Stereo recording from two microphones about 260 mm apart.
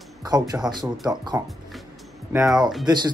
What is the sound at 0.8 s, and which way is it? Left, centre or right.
Speech, centre.